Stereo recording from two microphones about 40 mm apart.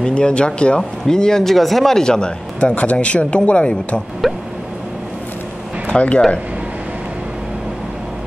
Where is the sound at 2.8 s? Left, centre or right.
Left.